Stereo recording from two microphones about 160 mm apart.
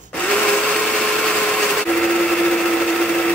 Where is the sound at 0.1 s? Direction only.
5° left (ahead or behind).